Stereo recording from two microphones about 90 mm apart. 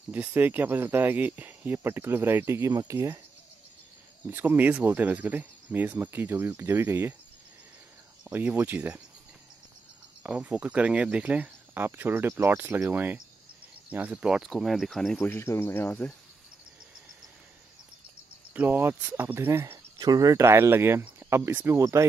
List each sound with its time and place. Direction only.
0.1 s speech: 20° right (ahead or behind); by 3.2 s 35° right (ahead or behind)
4.3 s speech: 20° right (ahead or behind)
8.3 s speech: 20° right (ahead or behind)
10.2 s speech: 15° right (ahead or behind); by 15.1 s centre (ahead or behind)
15.1 s speech: 25° left (ahead or behind)
18.5 s speech: 20° right (ahead or behind)
20.0 s speech: 45° right (ahead or behind)